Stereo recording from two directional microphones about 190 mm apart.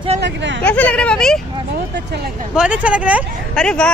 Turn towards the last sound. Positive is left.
turn(degrees=5)  # may be behind; listen again after turning